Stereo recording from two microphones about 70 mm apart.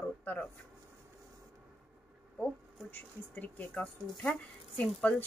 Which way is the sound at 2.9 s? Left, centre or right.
Left.